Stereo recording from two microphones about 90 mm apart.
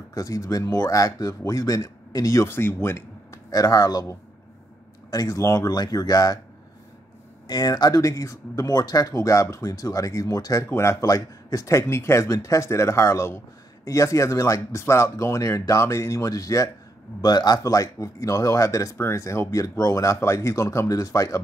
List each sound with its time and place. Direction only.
0.1 s speech: 35° left (ahead or behind)
3.4 s speech: 40° left (ahead or behind)
7.4 s speech: 50° left (ahead or behind)